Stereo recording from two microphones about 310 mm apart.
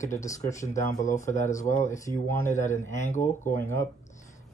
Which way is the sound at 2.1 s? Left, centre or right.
Centre.